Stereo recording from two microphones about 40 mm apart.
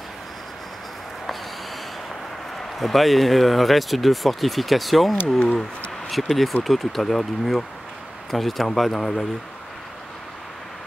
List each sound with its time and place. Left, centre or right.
2.5 s speech: centre